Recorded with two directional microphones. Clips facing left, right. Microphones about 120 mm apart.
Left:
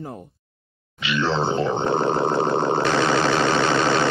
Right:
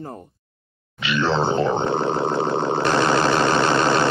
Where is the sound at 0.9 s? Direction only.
50° right (ahead or behind).